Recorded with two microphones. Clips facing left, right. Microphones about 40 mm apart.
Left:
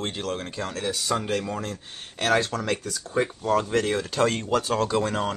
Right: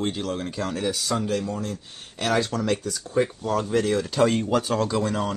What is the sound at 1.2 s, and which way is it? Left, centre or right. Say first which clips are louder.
Speech: right 1 dB; left.